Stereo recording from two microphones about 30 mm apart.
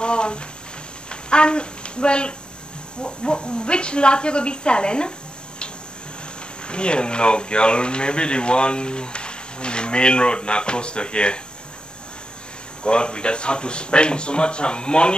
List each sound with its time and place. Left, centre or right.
0.0 s a sound: left
1.3 s speech: left
6.7 s speech: left
12.8 s speech: left